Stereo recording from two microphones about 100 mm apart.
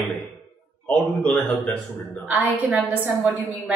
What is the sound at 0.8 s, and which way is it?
Speech, 15° left (ahead or behind).